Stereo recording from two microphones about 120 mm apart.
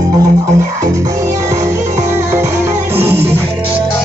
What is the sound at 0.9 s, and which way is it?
Music, 25° right (ahead or behind).